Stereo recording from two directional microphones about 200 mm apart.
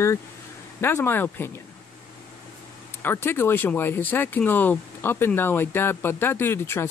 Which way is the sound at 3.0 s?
10° left (ahead or behind).